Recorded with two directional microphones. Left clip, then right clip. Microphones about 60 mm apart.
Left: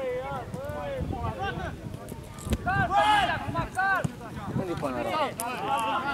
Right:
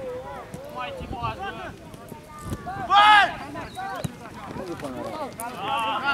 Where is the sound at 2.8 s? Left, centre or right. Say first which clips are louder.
Right 8 dB; left.